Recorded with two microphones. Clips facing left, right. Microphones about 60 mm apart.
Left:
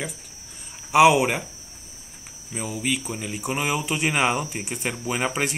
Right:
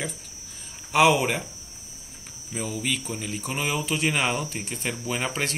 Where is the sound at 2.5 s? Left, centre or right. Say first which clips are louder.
Left 2 dB; centre.